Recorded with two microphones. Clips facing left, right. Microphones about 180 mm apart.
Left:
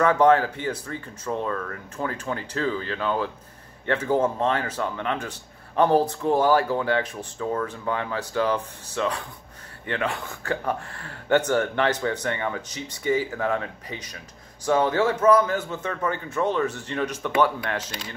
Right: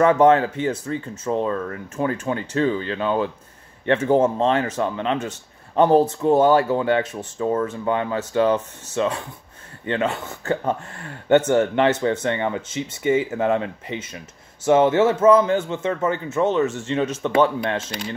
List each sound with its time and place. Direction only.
0.0 s a man's voice: 25° right (ahead or behind)